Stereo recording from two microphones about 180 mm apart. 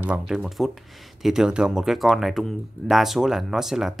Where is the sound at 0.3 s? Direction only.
5° right (ahead or behind).